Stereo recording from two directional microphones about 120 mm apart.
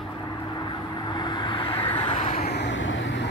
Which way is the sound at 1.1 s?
40° left (ahead or behind).